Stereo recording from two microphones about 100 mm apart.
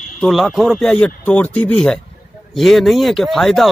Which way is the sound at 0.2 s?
Centre (ahead or behind).